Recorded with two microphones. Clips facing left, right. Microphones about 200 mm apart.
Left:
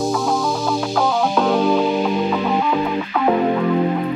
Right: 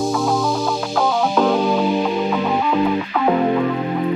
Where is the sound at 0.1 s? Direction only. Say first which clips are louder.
Right 1 dB; centre (ahead or behind).